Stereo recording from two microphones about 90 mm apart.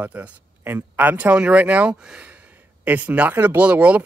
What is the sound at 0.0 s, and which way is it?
Speech, 20° right (ahead or behind).